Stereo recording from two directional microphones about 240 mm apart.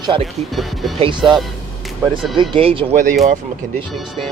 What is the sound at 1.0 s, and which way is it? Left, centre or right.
Speech, centre.